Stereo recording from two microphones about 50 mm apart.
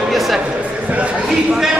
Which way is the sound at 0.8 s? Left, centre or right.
Right.